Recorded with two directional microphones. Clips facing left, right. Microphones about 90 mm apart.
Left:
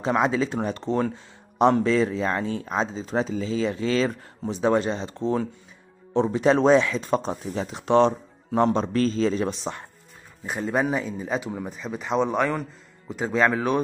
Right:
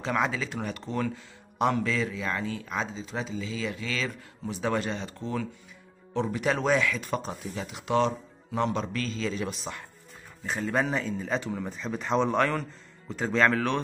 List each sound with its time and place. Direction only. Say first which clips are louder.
0.0 s speech: left 6 dB; 25° left (ahead or behind); by 4.3 s 40° left (ahead or behind)
4.5 s speech: left 7 dB; 25° left (ahead or behind)
10.4 s speech: left 3 dB; 15° left (ahead or behind)